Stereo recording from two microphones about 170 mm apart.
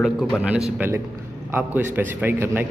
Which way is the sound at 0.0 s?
Centre (ahead or behind).